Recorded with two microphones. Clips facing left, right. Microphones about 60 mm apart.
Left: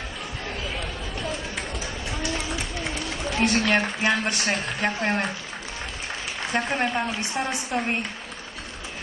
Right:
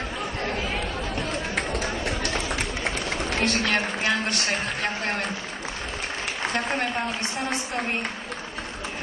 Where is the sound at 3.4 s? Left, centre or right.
Left.